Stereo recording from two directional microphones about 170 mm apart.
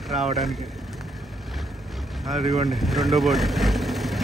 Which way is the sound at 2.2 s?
Centre (ahead or behind).